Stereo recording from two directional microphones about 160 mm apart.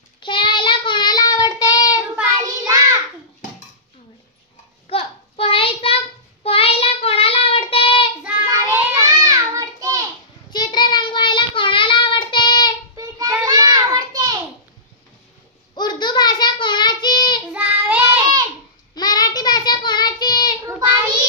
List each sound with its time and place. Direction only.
0.2 s child singing: 30° left (ahead or behind)
2.6 s child singing: 20° right (ahead or behind)
4.8 s child singing: 35° left (ahead or behind)
8.2 s child singing: 10° right (ahead or behind)
8.5 s child singing: 20° right (ahead or behind)
10.5 s child singing: 25° left (ahead or behind)
12.9 s a sound: 25° right (ahead or behind)
15.7 s child singing: 25° left (ahead or behind)
17.5 s child singing: 10° right (ahead or behind)
18.9 s child singing: 25° left (ahead or behind)
20.6 s child singing: 20° right (ahead or behind)